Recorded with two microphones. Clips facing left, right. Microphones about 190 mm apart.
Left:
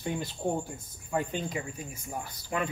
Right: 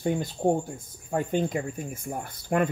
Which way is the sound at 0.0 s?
45° right (ahead or behind).